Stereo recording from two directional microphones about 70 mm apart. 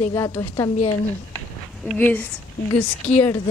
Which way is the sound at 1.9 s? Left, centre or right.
Left.